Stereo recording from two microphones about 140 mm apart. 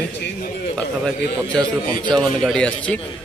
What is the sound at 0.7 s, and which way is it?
A man's voice, 5° left (ahead or behind).